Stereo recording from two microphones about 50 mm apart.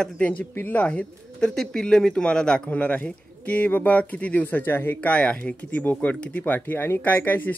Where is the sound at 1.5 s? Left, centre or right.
Centre.